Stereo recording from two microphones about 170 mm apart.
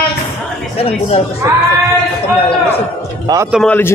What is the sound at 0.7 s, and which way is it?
Speech, 35° left (ahead or behind).